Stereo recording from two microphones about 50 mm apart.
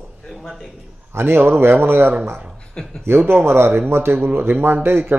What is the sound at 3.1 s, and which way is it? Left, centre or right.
Speech, right.